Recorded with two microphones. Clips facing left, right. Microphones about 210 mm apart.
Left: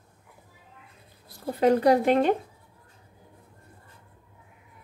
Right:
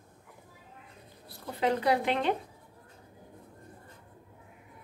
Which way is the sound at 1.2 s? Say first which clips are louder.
Left 8 dB; 45° left (ahead or behind).